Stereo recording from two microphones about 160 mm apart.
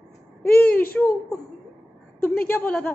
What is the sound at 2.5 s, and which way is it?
Speech, 10° left (ahead or behind).